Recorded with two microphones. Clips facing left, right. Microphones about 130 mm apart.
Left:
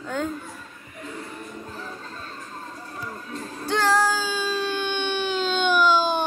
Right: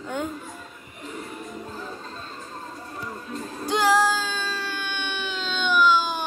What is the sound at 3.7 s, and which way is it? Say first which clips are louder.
Music: right 1 dB; 10° right (ahead or behind).